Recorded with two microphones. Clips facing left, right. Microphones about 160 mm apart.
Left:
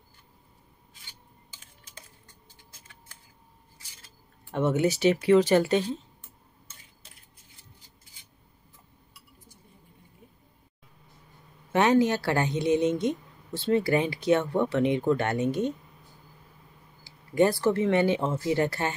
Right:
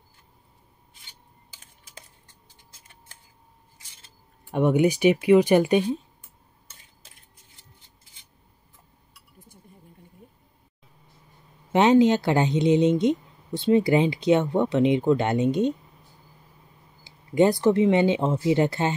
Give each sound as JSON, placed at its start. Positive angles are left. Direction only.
{"t": 4.0, "sound": "speech", "side_deg": -15}
{"t": 11.7, "sound": "a woman's voice", "side_deg": -20}
{"t": 17.0, "sound": "a woman's voice", "side_deg": -20}